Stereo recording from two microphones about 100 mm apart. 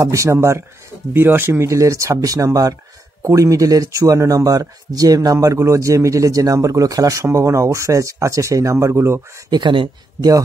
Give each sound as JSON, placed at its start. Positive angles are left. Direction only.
{"t": 0.0, "sound": "speech", "side_deg": -30}
{"t": 9.5, "sound": "speech", "side_deg": -55}